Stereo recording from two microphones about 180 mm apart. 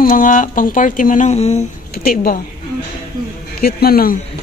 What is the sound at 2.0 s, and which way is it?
Speech, 55° left (ahead or behind).